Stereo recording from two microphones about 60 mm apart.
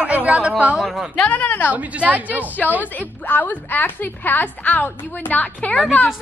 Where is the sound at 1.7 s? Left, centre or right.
Right.